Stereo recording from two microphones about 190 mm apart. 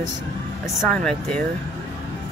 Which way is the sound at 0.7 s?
5° left (ahead or behind).